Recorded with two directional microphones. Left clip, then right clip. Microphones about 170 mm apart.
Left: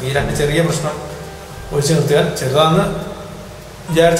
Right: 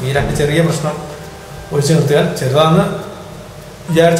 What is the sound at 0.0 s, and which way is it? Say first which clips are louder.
A man's voice: right 2 dB; 10° right (ahead or behind).